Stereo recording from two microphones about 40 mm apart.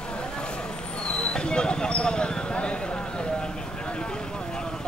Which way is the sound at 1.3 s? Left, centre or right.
Left.